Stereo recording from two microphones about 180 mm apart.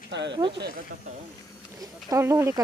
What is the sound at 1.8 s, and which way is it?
Speech, 20° right (ahead or behind).